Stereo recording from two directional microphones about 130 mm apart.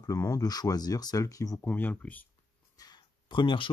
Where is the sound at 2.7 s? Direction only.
30° left (ahead or behind).